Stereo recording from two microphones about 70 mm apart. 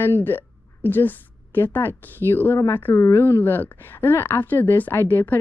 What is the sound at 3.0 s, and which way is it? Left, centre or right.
Speech, left.